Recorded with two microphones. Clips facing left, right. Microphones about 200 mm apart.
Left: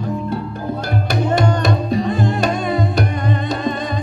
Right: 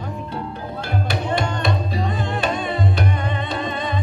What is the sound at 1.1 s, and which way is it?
Music, 45° left (ahead or behind).